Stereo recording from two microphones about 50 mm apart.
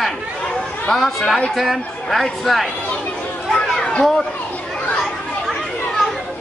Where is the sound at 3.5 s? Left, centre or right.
Centre.